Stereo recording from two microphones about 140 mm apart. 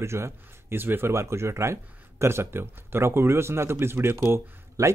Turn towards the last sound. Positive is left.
turn(degrees=-15)  # may be behind; listen again after turning